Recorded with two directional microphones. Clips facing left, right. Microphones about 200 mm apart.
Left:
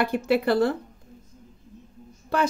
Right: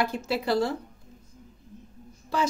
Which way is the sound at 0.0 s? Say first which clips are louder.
Left 5 dB; 60° left (ahead or behind).